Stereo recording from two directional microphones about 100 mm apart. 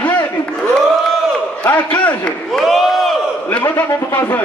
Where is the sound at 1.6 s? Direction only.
15° left (ahead or behind).